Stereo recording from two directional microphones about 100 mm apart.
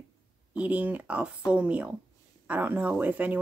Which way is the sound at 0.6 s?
15° right (ahead or behind).